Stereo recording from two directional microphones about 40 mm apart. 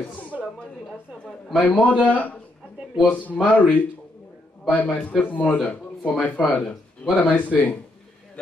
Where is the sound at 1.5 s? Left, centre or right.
Left.